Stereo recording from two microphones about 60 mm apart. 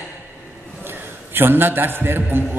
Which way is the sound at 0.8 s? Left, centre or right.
Right.